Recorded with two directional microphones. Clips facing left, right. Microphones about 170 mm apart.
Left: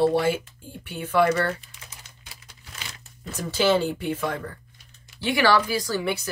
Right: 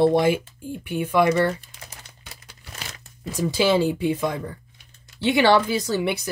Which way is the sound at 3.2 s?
10° right (ahead or behind).